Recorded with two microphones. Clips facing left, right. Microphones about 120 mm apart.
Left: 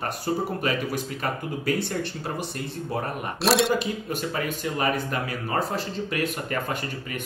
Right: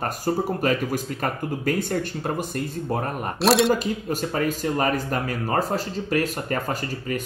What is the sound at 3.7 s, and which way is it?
Speech, 40° right (ahead or behind).